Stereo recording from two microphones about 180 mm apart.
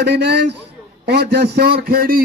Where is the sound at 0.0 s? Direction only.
70° right (ahead or behind).